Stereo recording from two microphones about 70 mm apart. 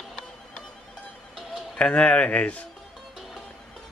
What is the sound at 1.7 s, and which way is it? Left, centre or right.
Speech, centre.